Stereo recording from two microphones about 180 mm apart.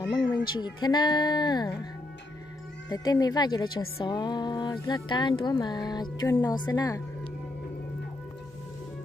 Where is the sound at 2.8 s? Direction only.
20° left (ahead or behind).